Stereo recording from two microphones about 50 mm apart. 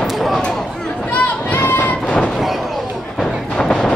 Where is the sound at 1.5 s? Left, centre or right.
Left.